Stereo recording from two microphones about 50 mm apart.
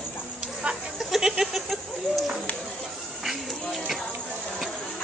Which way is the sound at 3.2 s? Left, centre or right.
Centre.